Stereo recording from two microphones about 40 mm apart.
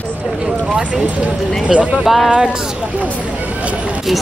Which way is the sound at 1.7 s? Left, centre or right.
Right.